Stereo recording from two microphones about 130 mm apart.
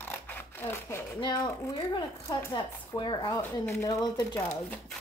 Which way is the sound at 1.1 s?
35° left (ahead or behind).